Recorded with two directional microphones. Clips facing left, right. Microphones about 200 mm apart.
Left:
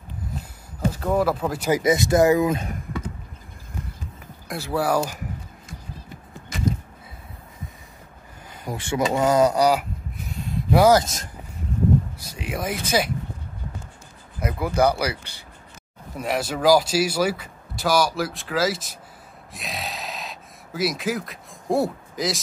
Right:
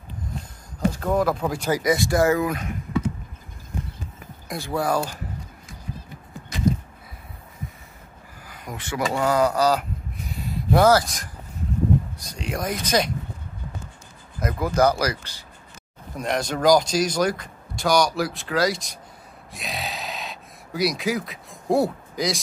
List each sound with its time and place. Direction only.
0.7 s speech: 5° left (ahead or behind)
1.7 s speech: 20° left (ahead or behind)
4.5 s speech: centre (ahead or behind)
8.5 s speech: 30° left (ahead or behind)
10.2 s a sound: centre (ahead or behind)
11.0 s speech: 25° left (ahead or behind)
12.2 s speech: 5° left (ahead or behind)
14.4 s speech: 10° left (ahead or behind)
16.2 s speech: 5° left (ahead or behind)
19.5 s a sound: centre (ahead or behind)